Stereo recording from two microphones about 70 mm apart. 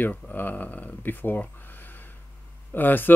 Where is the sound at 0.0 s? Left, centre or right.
Left.